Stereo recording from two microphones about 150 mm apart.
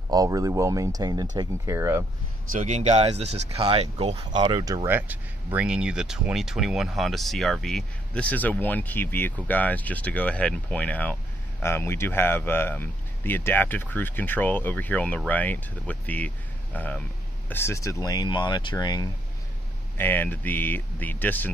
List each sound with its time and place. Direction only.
0.1 s speech: 25° right (ahead or behind)
2.5 s speech: 55° right (ahead or behind)
4.3 s speech: 30° right (ahead or behind)
4.8 s speech: 10° right (ahead or behind); by 19.0 s 25° left (ahead or behind)
20.0 s speech: 10° left (ahead or behind)